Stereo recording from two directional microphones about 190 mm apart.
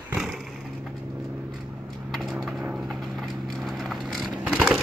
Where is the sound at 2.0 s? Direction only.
Centre (ahead or behind).